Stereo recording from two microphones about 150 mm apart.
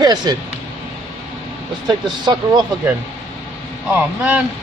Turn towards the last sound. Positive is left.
turn(degrees=-10)  # may be behind; listen again after turning